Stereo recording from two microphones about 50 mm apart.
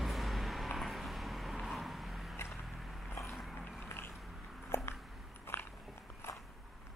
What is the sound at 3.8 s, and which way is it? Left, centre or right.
Mechanisms, left.